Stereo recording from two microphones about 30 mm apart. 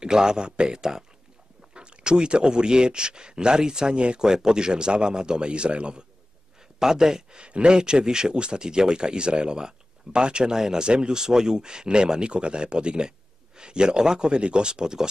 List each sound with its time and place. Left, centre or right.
0.0 s speech: right
1.7 s speech: right
3.9 s speech: right
4.2 s speech: right
6.8 s speech: centre
7.3 s speech: right